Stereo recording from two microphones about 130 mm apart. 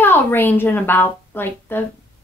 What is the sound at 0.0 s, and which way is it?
A woman's voice, 15° left (ahead or behind).